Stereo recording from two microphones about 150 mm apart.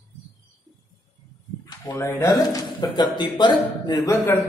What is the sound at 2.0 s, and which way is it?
Speech, 20° left (ahead or behind).